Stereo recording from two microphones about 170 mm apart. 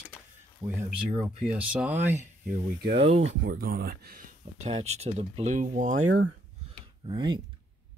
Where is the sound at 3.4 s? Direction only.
65° right (ahead or behind).